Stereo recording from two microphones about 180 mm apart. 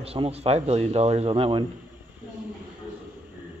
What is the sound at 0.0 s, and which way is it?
Speech, 35° right (ahead or behind).